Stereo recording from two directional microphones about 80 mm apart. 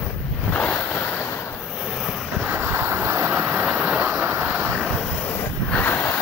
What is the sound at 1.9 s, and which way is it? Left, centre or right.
Vehicle, centre.